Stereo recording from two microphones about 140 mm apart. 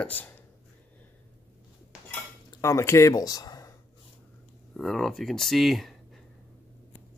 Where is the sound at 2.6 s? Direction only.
20° left (ahead or behind).